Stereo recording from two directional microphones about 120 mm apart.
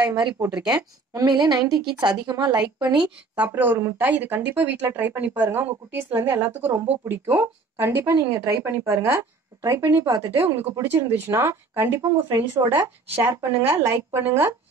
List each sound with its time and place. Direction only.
0.0 s a woman's voice: 30° right (ahead or behind)
3.0 s speech: 15° right (ahead or behind)